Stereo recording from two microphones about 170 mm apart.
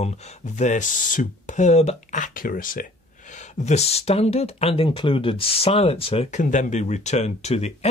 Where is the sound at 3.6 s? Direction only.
40° left (ahead or behind).